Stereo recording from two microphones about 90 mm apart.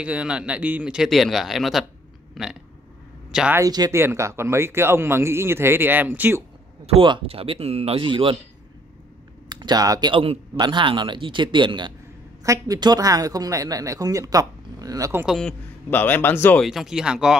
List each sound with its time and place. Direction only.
0.0 s speech: 15° right (ahead or behind)
3.3 s speech: 5° right (ahead or behind)
3.6 s speech: 45° right (ahead or behind)
3.9 s speech: 30° right (ahead or behind)
7.0 s speech: 80° right
9.5 s speech: 50° right (ahead or behind)
10.1 s speech: 90° right
10.6 s speech: 65° right (ahead or behind)
12.4 s a woman's voice: 45° right (ahead or behind)
15.2 s speech: 5° left (ahead or behind)
15.9 s speech: 20° left (ahead or behind)
16.6 s speech: 5° right (ahead or behind)